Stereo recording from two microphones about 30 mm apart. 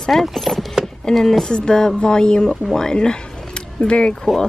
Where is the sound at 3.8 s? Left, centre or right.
Left.